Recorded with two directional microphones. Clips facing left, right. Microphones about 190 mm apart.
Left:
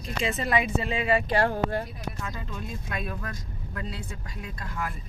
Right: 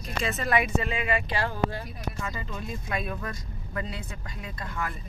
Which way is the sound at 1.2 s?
55° left (ahead or behind).